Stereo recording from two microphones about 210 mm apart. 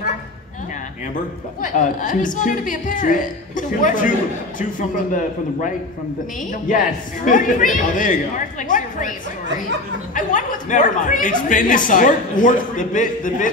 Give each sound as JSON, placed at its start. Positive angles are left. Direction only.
{"t": 1.6, "sound": "a woman's voice", "side_deg": 40}
{"t": 6.7, "sound": "a woman's voice", "side_deg": 40}
{"t": 10.1, "sound": "a woman's voice", "side_deg": 40}